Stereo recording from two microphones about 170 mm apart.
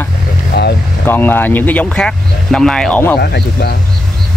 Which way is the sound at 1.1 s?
10° left (ahead or behind).